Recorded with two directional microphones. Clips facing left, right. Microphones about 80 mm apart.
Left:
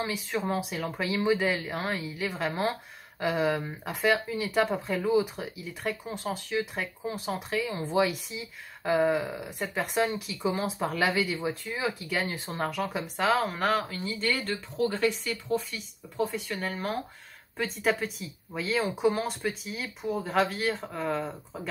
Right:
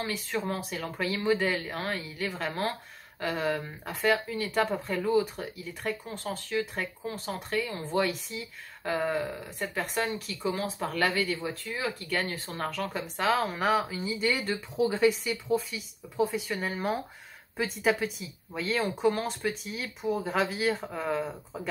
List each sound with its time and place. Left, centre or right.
0.0 s speech: centre